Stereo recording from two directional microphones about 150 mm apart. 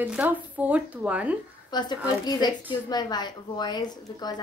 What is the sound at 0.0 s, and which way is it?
Speech, 10° right (ahead or behind).